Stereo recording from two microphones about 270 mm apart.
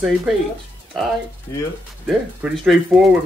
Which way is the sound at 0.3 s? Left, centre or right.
Centre.